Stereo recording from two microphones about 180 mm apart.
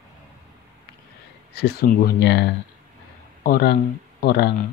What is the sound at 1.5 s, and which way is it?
Speech, 60° left (ahead or behind).